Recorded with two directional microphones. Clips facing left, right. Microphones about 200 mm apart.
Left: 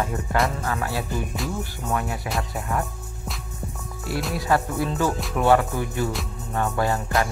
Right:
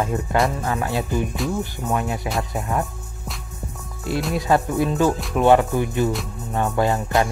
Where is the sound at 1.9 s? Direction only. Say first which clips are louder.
Right 3 dB; 20° right (ahead or behind).